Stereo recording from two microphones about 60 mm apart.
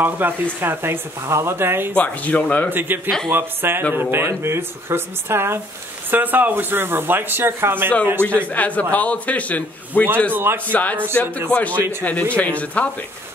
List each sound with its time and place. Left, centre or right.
0.0 s speech: right
1.2 s speech: right
2.0 s a man's voice: left
2.7 s speech: right
6.0 s speech: right
8.5 s a man's voice: left
10.3 s speech: right
10.7 s a man's voice: left